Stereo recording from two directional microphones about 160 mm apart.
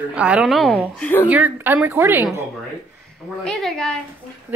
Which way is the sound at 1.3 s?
10° right (ahead or behind).